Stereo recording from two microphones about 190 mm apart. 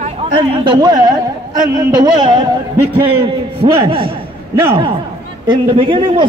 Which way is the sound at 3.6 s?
25° right (ahead or behind).